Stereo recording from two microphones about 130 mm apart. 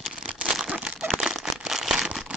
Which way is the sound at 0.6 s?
10° right (ahead or behind).